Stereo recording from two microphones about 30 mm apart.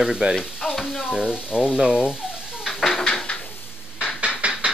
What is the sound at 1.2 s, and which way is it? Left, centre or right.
Frying, right.